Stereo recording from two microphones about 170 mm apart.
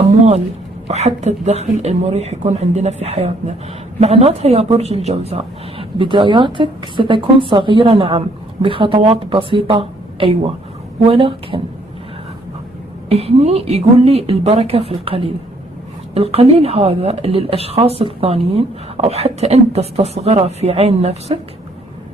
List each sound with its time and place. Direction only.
0.8 s speech: 40° right (ahead or behind)
13.1 s speech: 35° right (ahead or behind)